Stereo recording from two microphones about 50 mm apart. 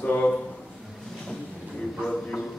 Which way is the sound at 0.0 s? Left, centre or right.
Left.